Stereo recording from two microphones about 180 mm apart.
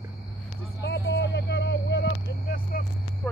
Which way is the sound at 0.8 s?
70° left (ahead or behind).